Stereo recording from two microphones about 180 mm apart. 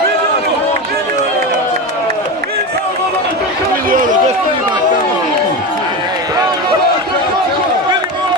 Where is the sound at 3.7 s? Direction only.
50° right (ahead or behind).